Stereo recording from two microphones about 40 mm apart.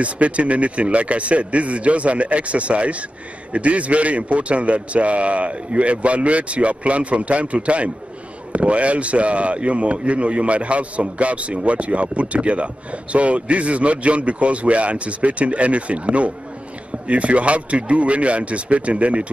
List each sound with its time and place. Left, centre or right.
0.0 s a man's voice: right